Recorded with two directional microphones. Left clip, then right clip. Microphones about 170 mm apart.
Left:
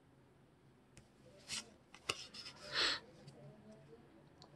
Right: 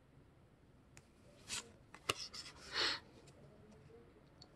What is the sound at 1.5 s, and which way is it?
Filing, 25° right (ahead or behind).